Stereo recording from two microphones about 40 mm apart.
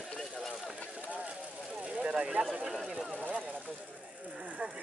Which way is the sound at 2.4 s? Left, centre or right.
Right.